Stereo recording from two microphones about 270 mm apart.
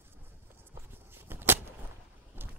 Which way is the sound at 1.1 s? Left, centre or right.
Centre.